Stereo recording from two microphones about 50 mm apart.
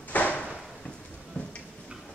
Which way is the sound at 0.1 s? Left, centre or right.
Left.